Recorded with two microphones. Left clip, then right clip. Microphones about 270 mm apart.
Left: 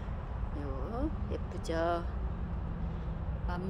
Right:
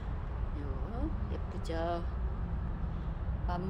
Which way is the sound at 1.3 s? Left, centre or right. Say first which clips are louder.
Left 3 dB; centre.